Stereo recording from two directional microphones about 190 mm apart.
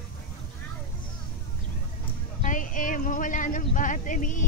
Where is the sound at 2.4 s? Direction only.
45° left (ahead or behind).